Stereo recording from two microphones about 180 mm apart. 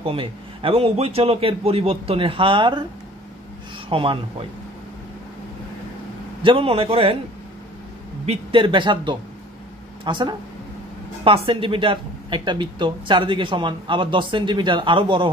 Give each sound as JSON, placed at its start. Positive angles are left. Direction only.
{"t": 0.0, "sound": "a man's voice", "side_deg": -30}
{"t": 3.9, "sound": "a man's voice", "side_deg": -30}
{"t": 6.4, "sound": "a man's voice", "side_deg": -30}
{"t": 8.3, "sound": "speech", "side_deg": -30}